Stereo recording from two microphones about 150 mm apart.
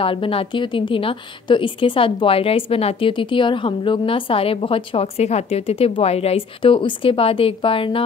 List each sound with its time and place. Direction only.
0.0 s a woman's voice: 35° left (ahead or behind)